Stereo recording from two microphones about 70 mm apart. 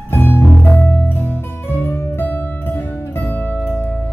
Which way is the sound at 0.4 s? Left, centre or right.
Left.